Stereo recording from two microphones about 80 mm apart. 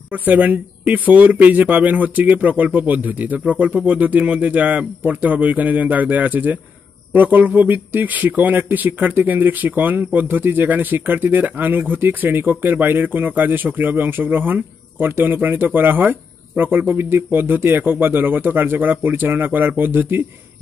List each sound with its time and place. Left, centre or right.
0.1 s speech: centre